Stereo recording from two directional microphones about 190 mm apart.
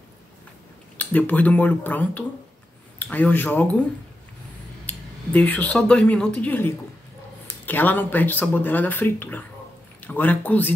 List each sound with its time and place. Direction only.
0.9 s speech: 10° left (ahead or behind)
4.8 s speech: 10° left (ahead or behind)